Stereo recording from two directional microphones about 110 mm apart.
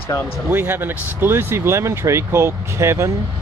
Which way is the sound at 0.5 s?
20° right (ahead or behind).